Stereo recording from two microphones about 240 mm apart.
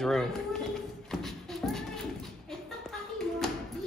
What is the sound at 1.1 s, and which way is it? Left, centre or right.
Music, centre.